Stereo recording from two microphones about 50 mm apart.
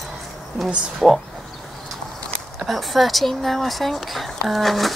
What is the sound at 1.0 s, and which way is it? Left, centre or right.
Speech, centre.